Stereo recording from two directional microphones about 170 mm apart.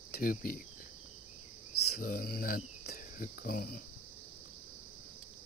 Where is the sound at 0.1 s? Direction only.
55° left (ahead or behind).